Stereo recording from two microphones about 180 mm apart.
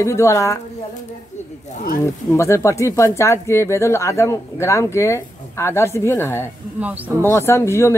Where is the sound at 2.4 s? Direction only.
15° left (ahead or behind).